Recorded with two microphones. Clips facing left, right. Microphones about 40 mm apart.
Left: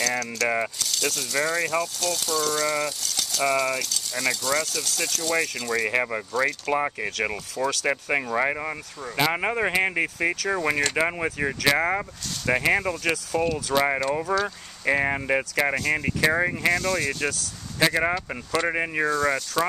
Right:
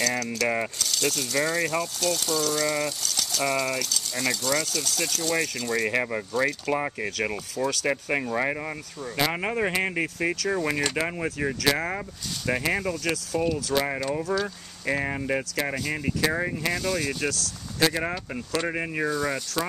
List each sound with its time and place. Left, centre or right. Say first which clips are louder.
0.0 s speech: left 1 dB; centre
6.3 s speech: left 1 dB; centre
6.7 s speech: left 2 dB; centre
14.3 s speech: left 2 dB; left
14.9 s speech: left 4 dB; left
16.7 s speech: left 3 dB; centre
17.7 s speech: left 3 dB; left
19.0 s speech: left 4 dB; centre